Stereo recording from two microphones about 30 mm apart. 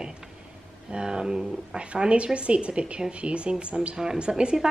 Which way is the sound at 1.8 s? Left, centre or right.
Right.